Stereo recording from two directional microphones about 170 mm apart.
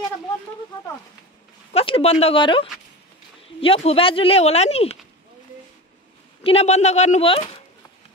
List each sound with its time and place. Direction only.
1.7 s speech: 35° left (ahead or behind)
6.4 s speech: 35° left (ahead or behind)